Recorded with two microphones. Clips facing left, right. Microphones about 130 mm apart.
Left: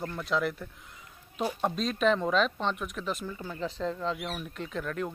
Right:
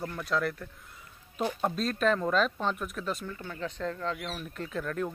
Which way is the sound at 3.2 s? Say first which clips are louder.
Left 2 dB; 10° left (ahead or behind).